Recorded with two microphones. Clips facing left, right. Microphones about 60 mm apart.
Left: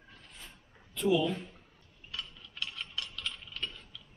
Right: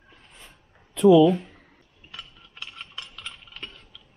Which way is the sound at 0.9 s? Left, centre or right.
Right.